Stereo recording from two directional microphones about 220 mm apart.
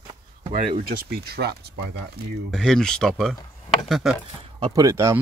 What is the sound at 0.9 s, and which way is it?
Speech, 45° right (ahead or behind).